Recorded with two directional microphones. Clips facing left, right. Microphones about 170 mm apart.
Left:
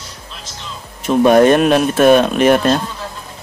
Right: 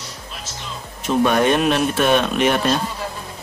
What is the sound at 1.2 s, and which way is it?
Speech, 45° left (ahead or behind).